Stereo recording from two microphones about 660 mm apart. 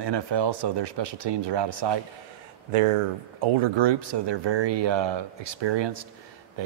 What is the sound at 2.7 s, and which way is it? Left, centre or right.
Speech, right.